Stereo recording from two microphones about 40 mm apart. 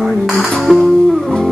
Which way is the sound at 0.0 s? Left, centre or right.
Centre.